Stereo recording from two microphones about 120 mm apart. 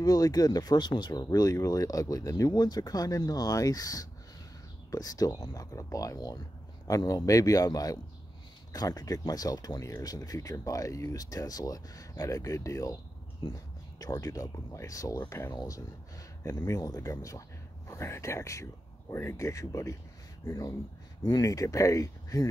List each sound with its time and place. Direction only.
0.0 s speech: 30° left (ahead or behind)